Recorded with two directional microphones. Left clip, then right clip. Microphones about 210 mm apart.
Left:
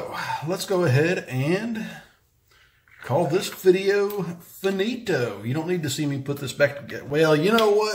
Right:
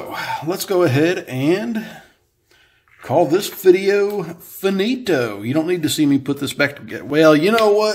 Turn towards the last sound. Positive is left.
turn(degrees=-50)  # may be behind; listen again after turning